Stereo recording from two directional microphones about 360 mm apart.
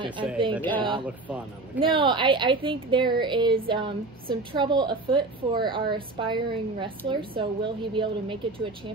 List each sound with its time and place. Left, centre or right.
0.0 s a woman's voice: centre
0.6 s a woman's voice: centre
0.8 s a woman's voice: centre